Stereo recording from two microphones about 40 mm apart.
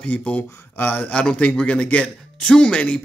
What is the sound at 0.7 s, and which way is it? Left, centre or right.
Speech, left.